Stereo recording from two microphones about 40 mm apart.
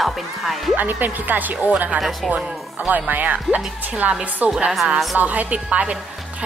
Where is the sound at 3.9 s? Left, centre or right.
Right.